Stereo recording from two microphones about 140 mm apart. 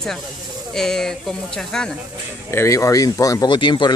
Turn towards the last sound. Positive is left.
turn(degrees=35)  # may be behind; listen again after turning